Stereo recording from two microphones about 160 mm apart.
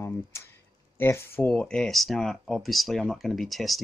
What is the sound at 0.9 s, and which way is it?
Speech, 15° left (ahead or behind).